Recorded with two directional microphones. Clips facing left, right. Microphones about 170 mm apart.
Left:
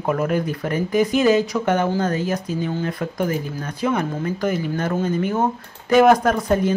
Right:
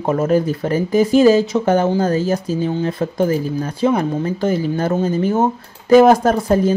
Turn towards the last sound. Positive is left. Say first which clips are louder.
# right 4 dB
turn(degrees=-30)  # may be behind; listen again after turning